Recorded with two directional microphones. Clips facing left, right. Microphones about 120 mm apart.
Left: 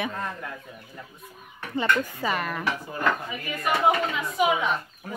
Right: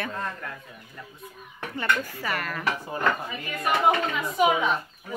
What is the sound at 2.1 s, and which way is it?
Speech, 20° left (ahead or behind).